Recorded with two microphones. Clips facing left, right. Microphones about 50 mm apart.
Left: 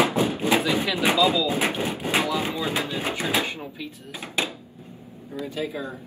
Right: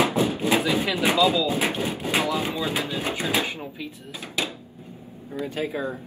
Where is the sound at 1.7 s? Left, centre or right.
Left.